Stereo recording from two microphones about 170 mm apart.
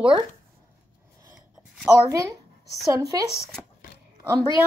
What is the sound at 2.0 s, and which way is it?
Speech, 20° right (ahead or behind).